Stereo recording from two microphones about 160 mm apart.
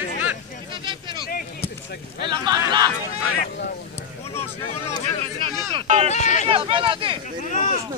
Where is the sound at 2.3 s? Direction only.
30° right (ahead or behind).